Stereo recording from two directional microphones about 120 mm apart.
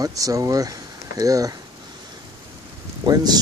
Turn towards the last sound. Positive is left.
turn(degrees=-35)  # may be behind; listen again after turning